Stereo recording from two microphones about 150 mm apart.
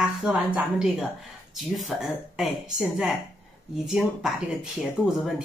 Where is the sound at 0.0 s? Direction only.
5° right (ahead or behind).